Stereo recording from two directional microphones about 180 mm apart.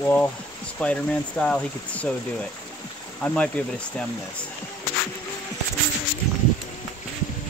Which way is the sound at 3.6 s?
10° left (ahead or behind).